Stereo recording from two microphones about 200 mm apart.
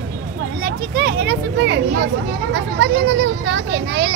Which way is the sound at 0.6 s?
55° right (ahead or behind).